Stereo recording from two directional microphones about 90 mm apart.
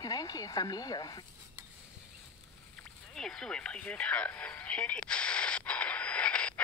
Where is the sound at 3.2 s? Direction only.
5° left (ahead or behind).